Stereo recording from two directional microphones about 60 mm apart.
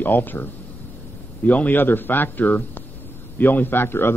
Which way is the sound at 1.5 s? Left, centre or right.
Left.